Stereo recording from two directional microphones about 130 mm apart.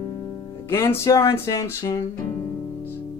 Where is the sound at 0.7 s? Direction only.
20° left (ahead or behind).